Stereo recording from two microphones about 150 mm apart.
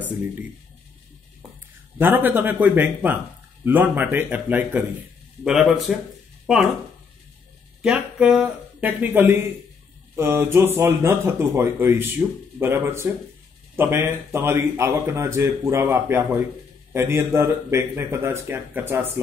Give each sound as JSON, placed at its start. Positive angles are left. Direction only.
{"t": 0.0, "sound": "speech", "side_deg": -10}
{"t": 2.0, "sound": "speech", "side_deg": -10}
{"t": 7.8, "sound": "speech", "side_deg": -5}